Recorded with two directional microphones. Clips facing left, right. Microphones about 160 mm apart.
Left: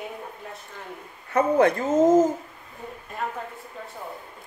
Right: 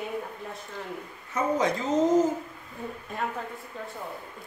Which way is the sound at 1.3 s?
60° left (ahead or behind).